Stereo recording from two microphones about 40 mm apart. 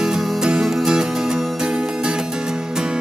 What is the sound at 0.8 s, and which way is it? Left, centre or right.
Music, centre.